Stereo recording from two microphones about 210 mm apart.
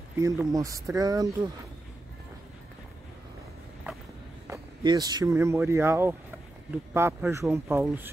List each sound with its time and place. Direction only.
0.2 s speech: 15° right (ahead or behind)
4.5 s speech: 20° right (ahead or behind)